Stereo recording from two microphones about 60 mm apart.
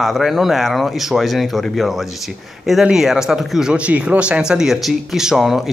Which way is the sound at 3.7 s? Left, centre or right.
Right.